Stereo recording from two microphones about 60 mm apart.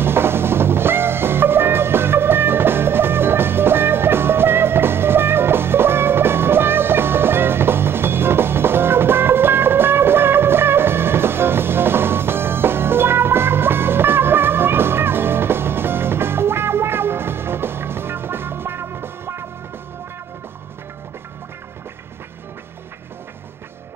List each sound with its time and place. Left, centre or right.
0.0 s music: right